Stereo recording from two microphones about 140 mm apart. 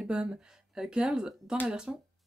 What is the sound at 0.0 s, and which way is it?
Speech, 5° right (ahead or behind).